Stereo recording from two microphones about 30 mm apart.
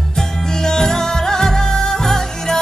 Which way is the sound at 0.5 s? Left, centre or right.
Centre.